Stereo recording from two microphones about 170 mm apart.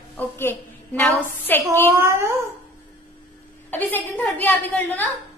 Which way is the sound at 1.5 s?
10° left (ahead or behind).